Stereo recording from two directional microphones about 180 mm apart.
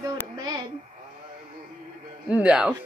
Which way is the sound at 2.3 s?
5° right (ahead or behind).